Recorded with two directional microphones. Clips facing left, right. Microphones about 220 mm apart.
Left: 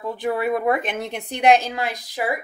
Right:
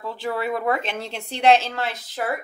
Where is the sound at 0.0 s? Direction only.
20° left (ahead or behind).